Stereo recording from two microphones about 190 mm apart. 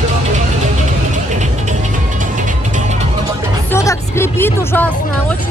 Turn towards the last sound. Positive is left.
turn(degrees=10)  # may be behind; listen again after turning